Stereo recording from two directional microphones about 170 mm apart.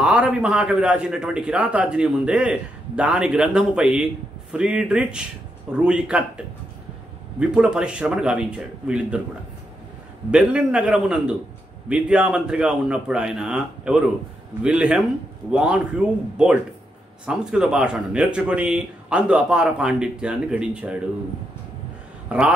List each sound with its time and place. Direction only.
0.0 s a man's voice: 5° right (ahead or behind)
10.3 s a man's voice: 5° right (ahead or behind)
17.3 s a man's voice: 5° right (ahead or behind)
22.3 s a man's voice: 10° right (ahead or behind)